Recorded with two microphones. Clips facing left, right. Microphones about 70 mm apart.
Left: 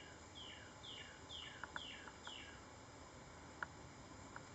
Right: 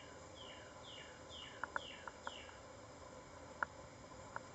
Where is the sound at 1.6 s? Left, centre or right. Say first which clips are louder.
Right 7 dB; right.